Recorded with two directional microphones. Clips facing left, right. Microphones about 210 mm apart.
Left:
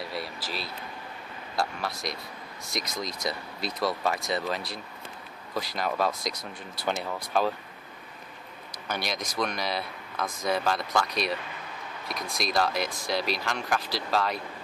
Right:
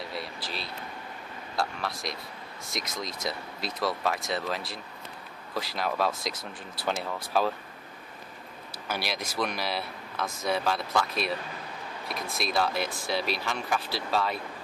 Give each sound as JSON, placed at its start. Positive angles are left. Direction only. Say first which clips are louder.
{"t": 0.1, "sound": "speech", "louder": "left 2 dB", "side_deg": 5}
{"t": 8.7, "sound": "speech", "louder": "left 1 dB", "side_deg": -5}